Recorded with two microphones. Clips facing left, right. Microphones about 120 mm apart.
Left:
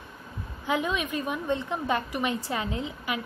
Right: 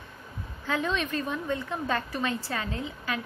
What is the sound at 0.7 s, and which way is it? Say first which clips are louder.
A woman's voice: left 1 dB; 15° left (ahead or behind).